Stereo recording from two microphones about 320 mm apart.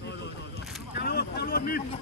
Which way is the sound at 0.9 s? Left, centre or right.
Left.